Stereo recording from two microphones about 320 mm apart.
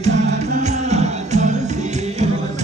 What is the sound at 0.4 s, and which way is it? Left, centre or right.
Music, right.